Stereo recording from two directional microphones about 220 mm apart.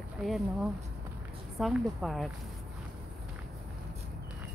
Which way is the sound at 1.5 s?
Centre (ahead or behind).